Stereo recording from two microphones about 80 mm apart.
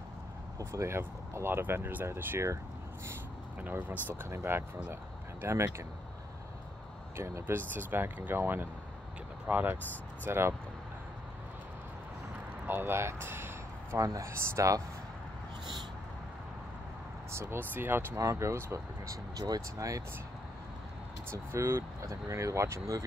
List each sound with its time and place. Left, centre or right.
0.6 s speech: right
3.6 s speech: right
4.2 s speech: right
7.2 s speech: right
10.2 s speech: right
12.6 s speech: right
13.9 s speech: right
17.3 s speech: right
18.2 s speech: right
19.3 s speech: right
21.3 s speech: right